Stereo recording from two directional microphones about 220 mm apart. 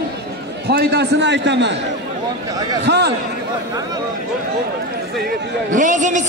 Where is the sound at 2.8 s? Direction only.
50° right (ahead or behind).